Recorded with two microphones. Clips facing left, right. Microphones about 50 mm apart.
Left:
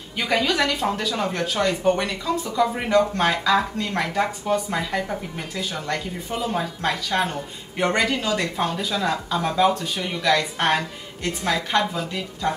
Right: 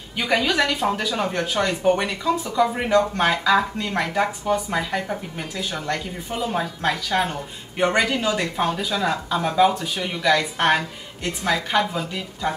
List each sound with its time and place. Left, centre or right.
0.2 s speech: centre